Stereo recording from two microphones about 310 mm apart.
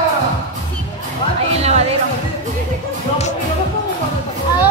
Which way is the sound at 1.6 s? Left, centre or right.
Right.